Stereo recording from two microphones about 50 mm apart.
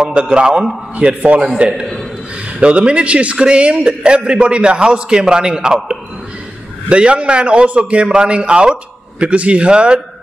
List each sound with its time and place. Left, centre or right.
0.1 s a man's voice: centre
2.6 s a man's voice: right
6.9 s a man's voice: right